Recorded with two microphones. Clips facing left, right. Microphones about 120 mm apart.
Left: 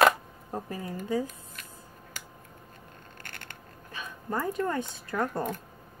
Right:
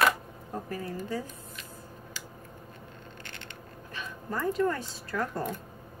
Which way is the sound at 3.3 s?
50° left (ahead or behind).